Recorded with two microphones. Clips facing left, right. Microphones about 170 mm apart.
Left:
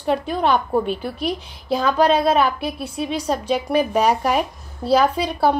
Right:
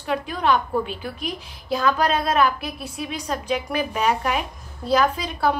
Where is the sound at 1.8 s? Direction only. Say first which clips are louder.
Left 4 dB; 30° left (ahead or behind).